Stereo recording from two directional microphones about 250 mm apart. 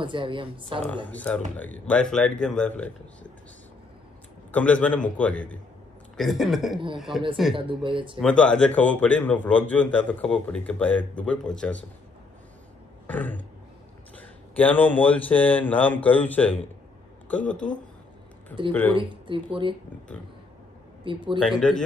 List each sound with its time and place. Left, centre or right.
0.0 s a woman's voice: centre
0.8 s speech: centre
4.5 s speech: centre
7.5 s a woman's voice: centre
8.2 s speech: centre
13.0 s throat clearing: centre
14.1 s speech: centre
18.7 s speech: centre
18.9 s a woman's voice: centre
21.0 s speech: centre
21.4 s speech: centre